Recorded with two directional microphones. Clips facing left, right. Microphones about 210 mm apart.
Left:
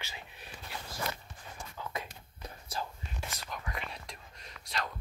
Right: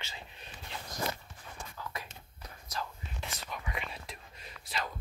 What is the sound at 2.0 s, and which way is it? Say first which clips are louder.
Walk: left 4 dB; 30° left (ahead or behind).